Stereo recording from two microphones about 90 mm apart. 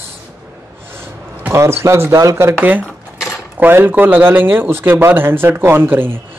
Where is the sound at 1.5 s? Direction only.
30° right (ahead or behind).